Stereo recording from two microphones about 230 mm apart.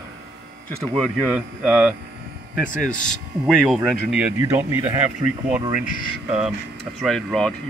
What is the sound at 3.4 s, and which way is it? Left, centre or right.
Speech, centre.